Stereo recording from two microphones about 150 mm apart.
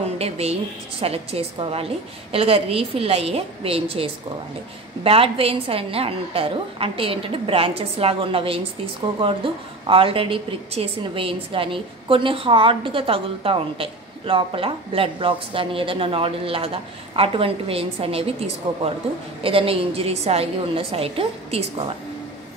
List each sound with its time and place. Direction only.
0.0 s a woman's voice: 45° right (ahead or behind)
19.4 s a woman's voice: 40° right (ahead or behind)